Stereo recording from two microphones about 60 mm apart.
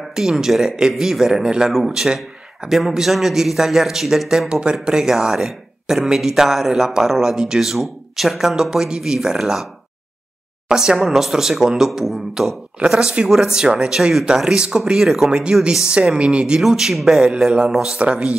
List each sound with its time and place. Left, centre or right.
0.1 s speech: centre
10.7 s speech: centre
16.6 s speech: centre
17.9 s speech: centre